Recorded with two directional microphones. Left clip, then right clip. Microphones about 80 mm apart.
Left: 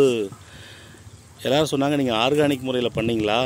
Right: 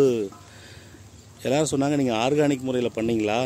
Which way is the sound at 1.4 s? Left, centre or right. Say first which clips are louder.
Left 3 dB; right.